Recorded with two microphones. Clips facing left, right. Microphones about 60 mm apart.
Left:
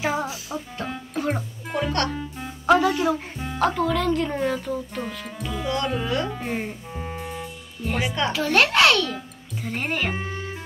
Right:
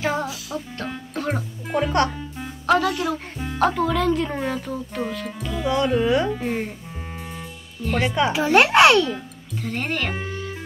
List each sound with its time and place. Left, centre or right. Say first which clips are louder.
0.0 s music: right 1 dB; centre
2.6 s speech: left 1 dB; centre
3.3 s speech: right 2 dB; centre
6.0 s a child's voice: right 6 dB; centre
6.3 s speech: right 3 dB; centre
7.3 s music: left 1 dB; centre
8.1 s a child's voice: right 5 dB; centre
9.6 s speech: right 1 dB; centre